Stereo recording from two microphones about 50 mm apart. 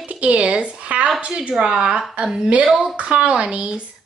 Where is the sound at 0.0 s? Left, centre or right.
Right.